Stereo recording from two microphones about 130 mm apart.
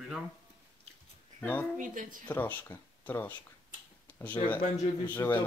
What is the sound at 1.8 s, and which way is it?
Speech, 90° right.